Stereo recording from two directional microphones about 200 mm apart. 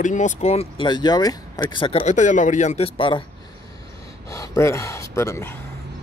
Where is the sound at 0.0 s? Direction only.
40° left (ahead or behind).